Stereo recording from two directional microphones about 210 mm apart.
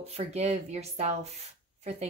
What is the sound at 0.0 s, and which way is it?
Speech, 30° right (ahead or behind).